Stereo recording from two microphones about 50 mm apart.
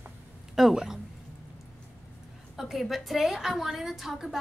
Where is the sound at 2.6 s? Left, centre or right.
Centre.